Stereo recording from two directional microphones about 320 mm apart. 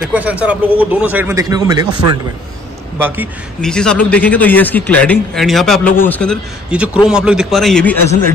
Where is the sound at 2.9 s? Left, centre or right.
Centre.